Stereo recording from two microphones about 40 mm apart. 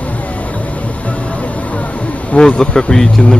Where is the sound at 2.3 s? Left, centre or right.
Centre.